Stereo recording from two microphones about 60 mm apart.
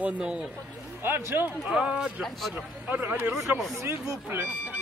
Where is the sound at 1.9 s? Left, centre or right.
Centre.